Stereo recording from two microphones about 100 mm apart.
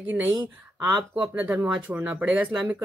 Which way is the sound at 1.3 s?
20° right (ahead or behind).